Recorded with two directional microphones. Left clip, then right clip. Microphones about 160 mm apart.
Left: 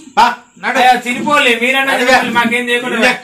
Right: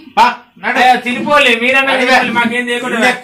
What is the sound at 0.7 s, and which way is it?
Speech, 15° left (ahead or behind).